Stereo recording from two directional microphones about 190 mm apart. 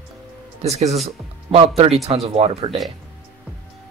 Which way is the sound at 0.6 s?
35° right (ahead or behind).